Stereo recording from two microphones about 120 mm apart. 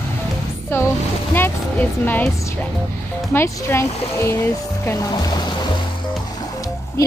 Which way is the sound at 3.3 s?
20° left (ahead or behind).